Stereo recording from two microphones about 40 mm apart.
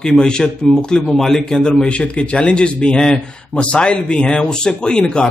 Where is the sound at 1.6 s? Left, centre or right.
Left.